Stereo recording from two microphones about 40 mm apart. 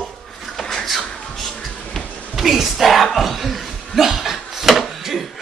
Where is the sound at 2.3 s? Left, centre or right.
Centre.